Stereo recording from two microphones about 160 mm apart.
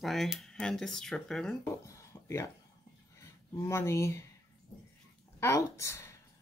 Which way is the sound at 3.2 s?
20° left (ahead or behind).